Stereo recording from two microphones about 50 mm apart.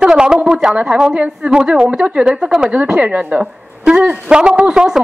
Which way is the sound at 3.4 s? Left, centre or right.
Centre.